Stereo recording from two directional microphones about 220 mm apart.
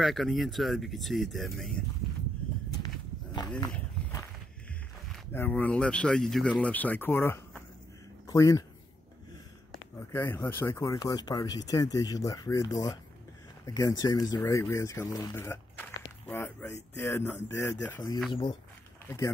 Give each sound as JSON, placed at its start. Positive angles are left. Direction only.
{"t": 0.0, "sound": "speech", "side_deg": 0}
{"t": 3.7, "sound": "walk", "side_deg": 15}
{"t": 5.1, "sound": "speech", "side_deg": 5}
{"t": 10.1, "sound": "speech", "side_deg": 10}